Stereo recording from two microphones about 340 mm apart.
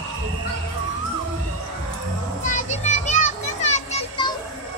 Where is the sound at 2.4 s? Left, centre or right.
Left.